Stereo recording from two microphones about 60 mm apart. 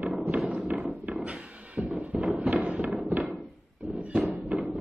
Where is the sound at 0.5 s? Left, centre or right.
Centre.